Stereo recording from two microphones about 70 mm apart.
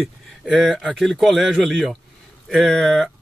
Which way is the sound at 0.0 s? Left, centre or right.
Centre.